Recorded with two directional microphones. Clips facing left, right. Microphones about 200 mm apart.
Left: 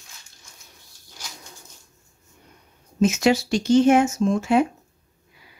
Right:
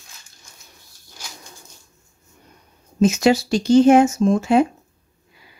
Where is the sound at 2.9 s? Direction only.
35° right (ahead or behind).